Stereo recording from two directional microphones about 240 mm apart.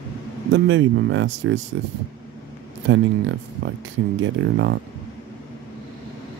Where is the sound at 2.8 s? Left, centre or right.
Right.